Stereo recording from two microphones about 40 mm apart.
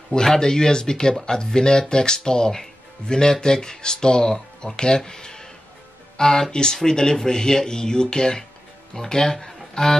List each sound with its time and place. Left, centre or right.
0.1 s speech: centre